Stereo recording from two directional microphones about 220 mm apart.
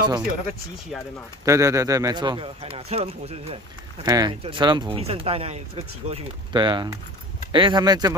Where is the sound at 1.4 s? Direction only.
15° right (ahead or behind).